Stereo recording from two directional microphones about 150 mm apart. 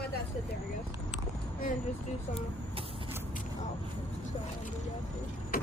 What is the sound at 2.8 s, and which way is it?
Vehicle, 40° right (ahead or behind).